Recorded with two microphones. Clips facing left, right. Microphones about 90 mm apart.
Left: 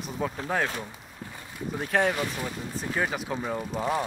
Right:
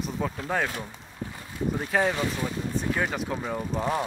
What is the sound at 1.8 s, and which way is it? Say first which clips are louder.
Speech: left 1 dB; centre (ahead or behind).